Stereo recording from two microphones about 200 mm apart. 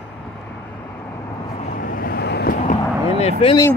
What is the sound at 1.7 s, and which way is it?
Vehicle, 45° left (ahead or behind).